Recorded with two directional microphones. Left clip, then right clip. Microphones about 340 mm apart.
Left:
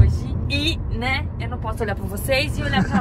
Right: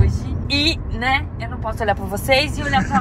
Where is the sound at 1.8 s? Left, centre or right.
Centre.